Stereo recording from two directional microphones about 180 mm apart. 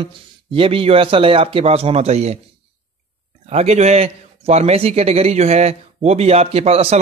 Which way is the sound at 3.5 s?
35° right (ahead or behind).